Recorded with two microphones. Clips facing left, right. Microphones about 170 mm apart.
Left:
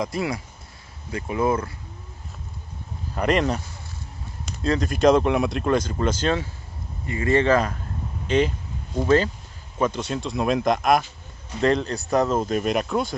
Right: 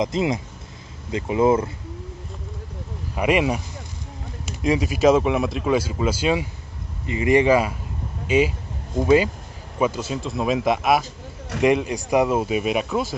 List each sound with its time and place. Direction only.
0.0 s speech: 20° right (ahead or behind)
3.2 s speech: 10° right (ahead or behind)